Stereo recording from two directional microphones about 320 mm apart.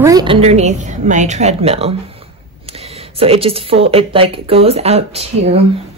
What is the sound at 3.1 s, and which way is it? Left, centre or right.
A woman's voice, centre.